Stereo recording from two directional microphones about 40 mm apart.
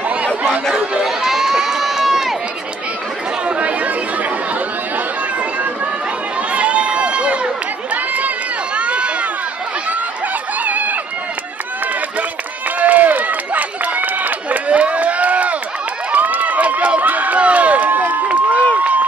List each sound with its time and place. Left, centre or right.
1.0 s crowd: centre
3.4 s chatter: right
6.5 s run: right
10.6 s a sound: right
12.7 s run: right